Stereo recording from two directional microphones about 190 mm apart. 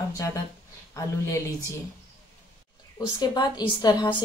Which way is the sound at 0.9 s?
15° left (ahead or behind).